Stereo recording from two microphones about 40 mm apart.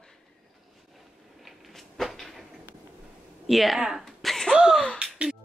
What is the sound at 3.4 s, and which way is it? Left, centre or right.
Speech, centre.